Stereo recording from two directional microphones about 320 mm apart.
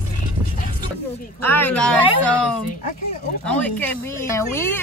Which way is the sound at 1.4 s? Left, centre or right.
Centre.